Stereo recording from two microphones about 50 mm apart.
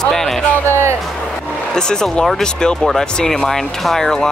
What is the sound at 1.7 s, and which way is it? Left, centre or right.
Speech, centre.